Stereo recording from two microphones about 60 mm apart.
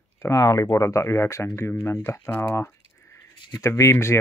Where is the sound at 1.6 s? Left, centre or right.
Left.